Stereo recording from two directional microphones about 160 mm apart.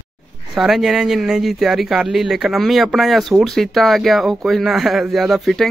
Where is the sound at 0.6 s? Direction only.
Centre (ahead or behind).